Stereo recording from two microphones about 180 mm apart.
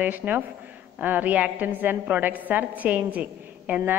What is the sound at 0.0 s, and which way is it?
A woman's voice, 10° right (ahead or behind).